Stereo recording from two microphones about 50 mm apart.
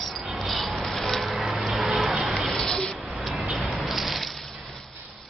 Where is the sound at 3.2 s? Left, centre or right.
Centre.